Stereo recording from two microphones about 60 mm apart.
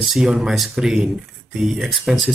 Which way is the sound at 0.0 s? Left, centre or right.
Centre.